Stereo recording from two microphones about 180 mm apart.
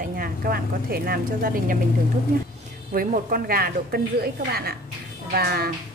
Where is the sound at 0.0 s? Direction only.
55° right (ahead or behind).